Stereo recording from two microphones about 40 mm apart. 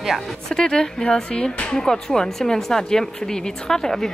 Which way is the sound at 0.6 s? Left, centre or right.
Centre.